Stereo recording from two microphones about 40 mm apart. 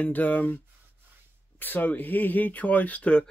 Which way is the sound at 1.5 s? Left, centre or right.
Left.